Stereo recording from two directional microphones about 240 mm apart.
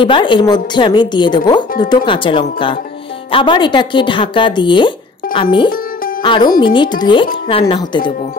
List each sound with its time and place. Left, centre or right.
0.0 s a woman's voice: left